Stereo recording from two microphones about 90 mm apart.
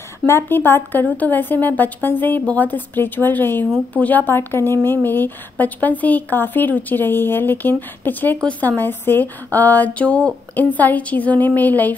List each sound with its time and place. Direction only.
0.3 s a woman's voice: 25° left (ahead or behind)